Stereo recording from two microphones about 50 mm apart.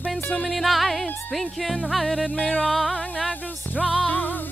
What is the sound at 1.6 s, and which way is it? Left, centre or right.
Music, left.